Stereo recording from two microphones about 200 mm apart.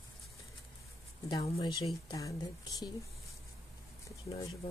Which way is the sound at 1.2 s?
20° left (ahead or behind).